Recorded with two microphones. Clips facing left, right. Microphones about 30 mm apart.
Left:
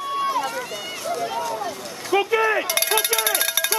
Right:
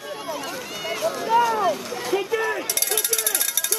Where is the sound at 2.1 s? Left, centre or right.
Left.